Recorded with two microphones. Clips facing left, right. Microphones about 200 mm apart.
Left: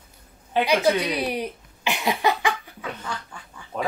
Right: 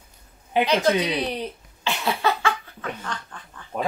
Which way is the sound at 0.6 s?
10° left (ahead or behind).